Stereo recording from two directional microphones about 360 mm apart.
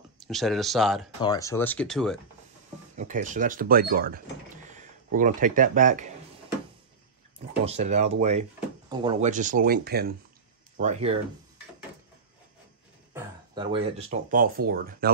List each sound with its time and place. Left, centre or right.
0.3 s speech: centre
3.0 s speech: right
7.3 s speech: centre
13.1 s speech: centre